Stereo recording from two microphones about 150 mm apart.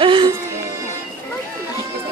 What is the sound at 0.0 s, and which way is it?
Music, 35° right (ahead or behind).